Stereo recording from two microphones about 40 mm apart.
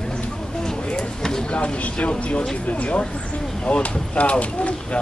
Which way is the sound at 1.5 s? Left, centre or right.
Left.